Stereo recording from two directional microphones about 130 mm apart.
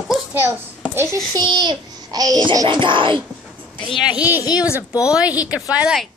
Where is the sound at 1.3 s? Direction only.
35° right (ahead or behind).